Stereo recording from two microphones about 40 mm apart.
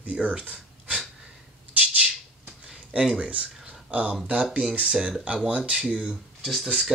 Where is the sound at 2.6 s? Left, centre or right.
Centre.